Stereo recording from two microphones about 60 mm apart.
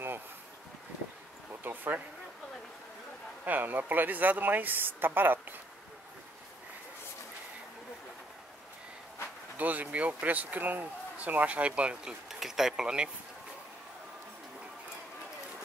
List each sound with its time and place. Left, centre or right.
1.6 s a sound: right
3.4 s speech: right
9.6 s speech: right